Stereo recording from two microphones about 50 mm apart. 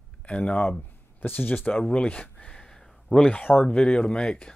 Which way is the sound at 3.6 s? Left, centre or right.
Centre.